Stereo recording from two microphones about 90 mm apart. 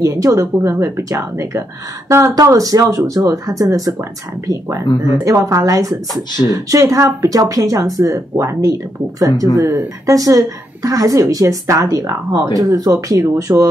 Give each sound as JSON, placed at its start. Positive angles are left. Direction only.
{"t": 0.0, "sound": "a woman's voice", "side_deg": -35}
{"t": 2.3, "sound": "a woman's voice", "side_deg": -40}